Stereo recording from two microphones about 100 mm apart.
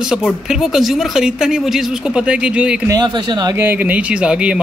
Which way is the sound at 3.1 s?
50° right (ahead or behind).